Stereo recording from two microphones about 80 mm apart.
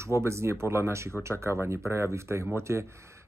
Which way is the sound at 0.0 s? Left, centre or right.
Right.